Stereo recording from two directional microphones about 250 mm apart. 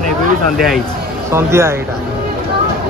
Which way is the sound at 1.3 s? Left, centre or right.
Centre.